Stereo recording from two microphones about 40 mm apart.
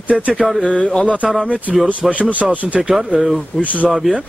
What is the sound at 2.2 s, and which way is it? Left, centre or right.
Speech, right.